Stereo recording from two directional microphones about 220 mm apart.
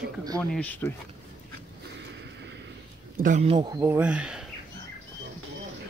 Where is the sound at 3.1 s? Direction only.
35° right (ahead or behind); by 4.4 s 5° right (ahead or behind).